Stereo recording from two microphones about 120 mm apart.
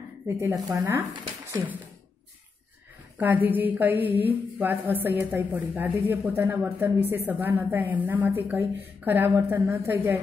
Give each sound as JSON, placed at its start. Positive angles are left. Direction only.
{"t": 0.4, "sound": "speech", "side_deg": -20}
{"t": 1.1, "sound": "a sound", "side_deg": -40}
{"t": 3.2, "sound": "a woman's voice", "side_deg": -15}